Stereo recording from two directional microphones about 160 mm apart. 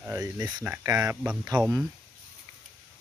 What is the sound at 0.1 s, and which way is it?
Speech, 20° right (ahead or behind).